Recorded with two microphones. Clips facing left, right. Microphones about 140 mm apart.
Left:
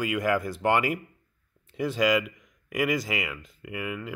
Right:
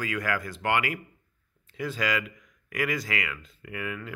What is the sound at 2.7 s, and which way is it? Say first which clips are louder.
Speech: left 3 dB; 20° left (ahead or behind).